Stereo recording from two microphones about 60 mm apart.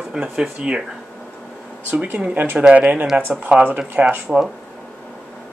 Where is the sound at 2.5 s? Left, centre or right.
Centre.